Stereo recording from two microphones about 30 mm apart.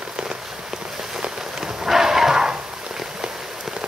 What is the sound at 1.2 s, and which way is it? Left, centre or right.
Rain on surface, right.